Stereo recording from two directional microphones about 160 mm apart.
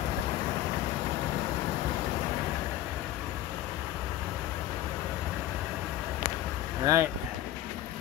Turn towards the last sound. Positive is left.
turn(degrees=-20)  # may be behind; listen again after turning